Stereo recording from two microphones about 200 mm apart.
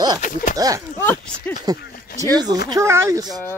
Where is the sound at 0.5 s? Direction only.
20° right (ahead or behind).